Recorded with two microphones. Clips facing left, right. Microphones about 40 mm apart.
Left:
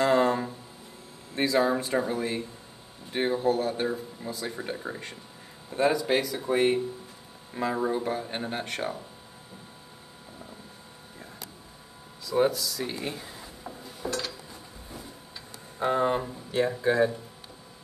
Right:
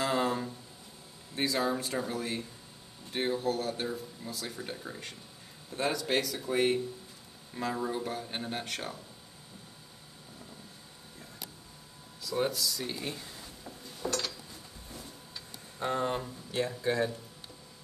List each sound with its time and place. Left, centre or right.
0.0 s a sound: centre
1.3 s speech: centre
4.7 s speech: left
5.7 s speech: centre
12.3 s speech: centre
13.8 s dishes: centre
15.8 s speech: centre